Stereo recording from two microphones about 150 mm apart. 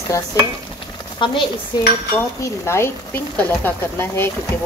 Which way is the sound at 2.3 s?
20° left (ahead or behind).